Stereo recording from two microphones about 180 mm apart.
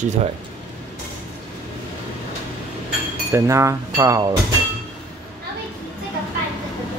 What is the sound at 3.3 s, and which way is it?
Speech, 15° right (ahead or behind).